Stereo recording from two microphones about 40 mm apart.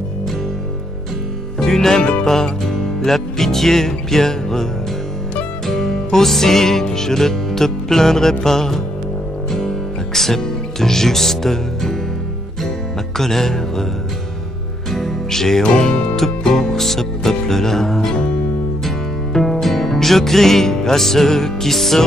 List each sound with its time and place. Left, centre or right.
1.6 s music: centre
5.7 s music: centre
10.1 s speech: centre
13.2 s music: centre
14.9 s music: centre
15.6 s speech: centre
16.2 s music: centre